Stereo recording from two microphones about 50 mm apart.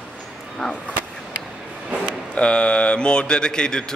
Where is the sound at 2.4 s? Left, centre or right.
Left.